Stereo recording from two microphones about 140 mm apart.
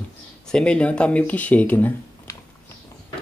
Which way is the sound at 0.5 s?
5° left (ahead or behind).